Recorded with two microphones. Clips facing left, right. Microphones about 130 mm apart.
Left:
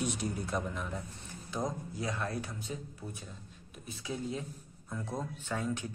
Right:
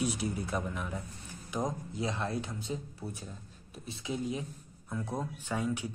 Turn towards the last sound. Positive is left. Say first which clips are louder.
# right 2 dB
turn(degrees=-10)  # may be behind; listen again after turning